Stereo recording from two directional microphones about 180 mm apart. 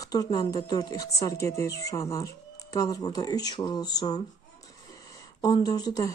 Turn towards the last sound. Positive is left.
turn(degrees=20)  # may be behind; listen again after turning